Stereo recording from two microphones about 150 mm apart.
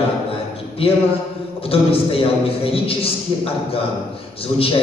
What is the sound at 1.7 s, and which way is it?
A man's voice, 40° left (ahead or behind).